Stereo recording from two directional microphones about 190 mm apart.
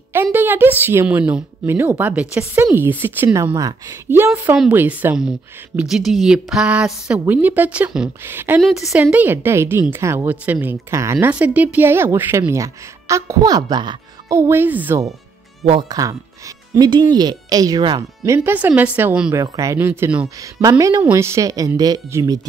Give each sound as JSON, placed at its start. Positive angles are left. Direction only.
{"t": 0.1, "sound": "a woman's voice", "side_deg": -10}
{"t": 8.5, "sound": "a woman's voice", "side_deg": 0}
{"t": 20.6, "sound": "a woman's voice", "side_deg": -20}